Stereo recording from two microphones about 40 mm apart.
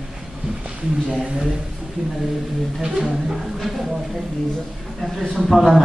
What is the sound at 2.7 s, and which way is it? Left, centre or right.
Speech, centre.